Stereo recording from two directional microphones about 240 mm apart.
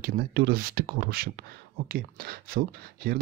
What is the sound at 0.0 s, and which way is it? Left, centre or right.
Speech, right.